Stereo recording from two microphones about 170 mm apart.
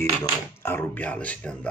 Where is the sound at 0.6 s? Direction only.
15° left (ahead or behind).